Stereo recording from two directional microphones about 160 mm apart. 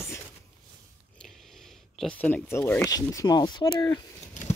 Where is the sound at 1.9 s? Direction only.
5° left (ahead or behind); by 4.4 s 25° left (ahead or behind).